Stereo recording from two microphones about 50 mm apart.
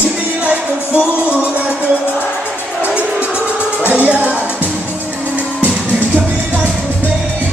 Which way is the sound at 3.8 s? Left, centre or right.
Right.